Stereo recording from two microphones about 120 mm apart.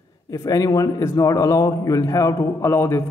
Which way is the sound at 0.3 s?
30° left (ahead or behind).